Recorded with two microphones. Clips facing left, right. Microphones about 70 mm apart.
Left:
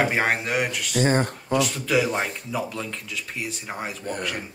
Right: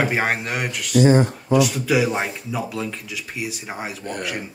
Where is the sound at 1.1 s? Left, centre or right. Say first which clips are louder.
Right 5 dB; left.